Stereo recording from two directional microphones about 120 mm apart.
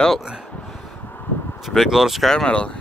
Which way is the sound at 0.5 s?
15° left (ahead or behind).